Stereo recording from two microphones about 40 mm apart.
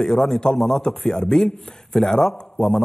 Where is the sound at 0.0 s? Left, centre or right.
Centre.